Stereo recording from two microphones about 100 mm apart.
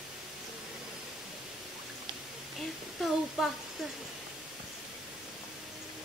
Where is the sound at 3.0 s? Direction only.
5° right (ahead or behind).